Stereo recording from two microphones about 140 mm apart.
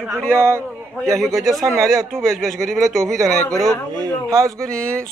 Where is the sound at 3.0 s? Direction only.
25° right (ahead or behind).